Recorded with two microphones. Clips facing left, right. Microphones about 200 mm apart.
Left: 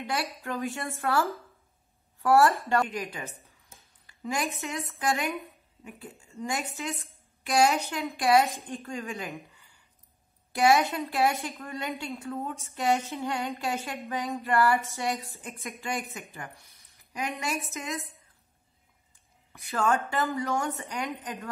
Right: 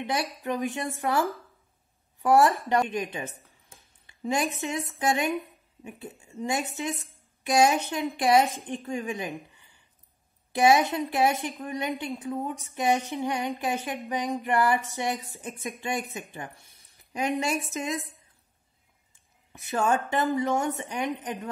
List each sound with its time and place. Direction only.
0.0 s a woman's voice: 20° right (ahead or behind)
19.5 s a woman's voice: 20° right (ahead or behind)